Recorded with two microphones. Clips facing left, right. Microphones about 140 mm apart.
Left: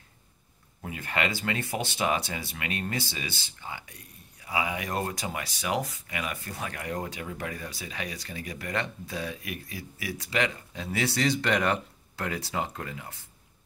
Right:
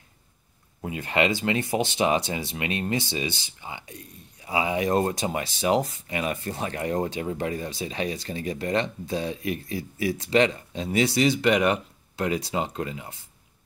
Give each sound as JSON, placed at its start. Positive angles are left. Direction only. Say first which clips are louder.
{"t": 0.8, "sound": "speech", "louder": "right 6 dB", "side_deg": -20}